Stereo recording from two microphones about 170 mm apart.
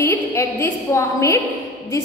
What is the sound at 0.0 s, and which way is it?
A woman's voice, 15° left (ahead or behind).